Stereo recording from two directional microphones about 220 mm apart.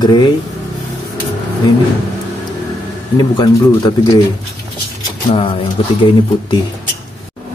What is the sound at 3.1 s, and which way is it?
Speech, 20° left (ahead or behind).